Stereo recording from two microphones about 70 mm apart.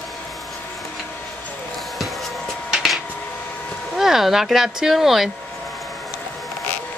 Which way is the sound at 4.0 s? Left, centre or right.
Centre.